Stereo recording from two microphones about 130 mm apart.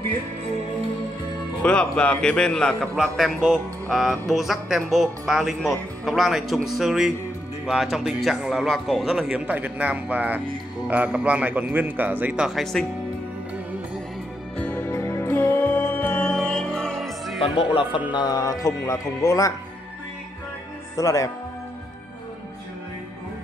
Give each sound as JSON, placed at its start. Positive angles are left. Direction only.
{"t": 1.6, "sound": "a man's voice", "side_deg": 10}
{"t": 14.6, "sound": "music", "side_deg": 15}
{"t": 17.4, "sound": "speech", "side_deg": 40}
{"t": 18.1, "sound": "speech", "side_deg": 30}
{"t": 20.9, "sound": "speech", "side_deg": 25}